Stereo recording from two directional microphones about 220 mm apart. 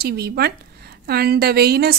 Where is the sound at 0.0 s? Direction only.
45° right (ahead or behind).